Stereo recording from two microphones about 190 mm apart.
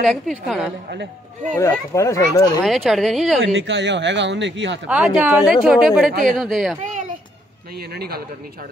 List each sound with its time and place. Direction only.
0.0 s speech: centre (ahead or behind)
0.8 s speech: 50° right (ahead or behind)
1.5 s speech: 15° left (ahead or behind)
2.6 s speech: centre (ahead or behind)
3.5 s speech: 70° right (ahead or behind)
4.8 s speech: 5° right (ahead or behind)
7.7 s a man's voice: 55° right (ahead or behind)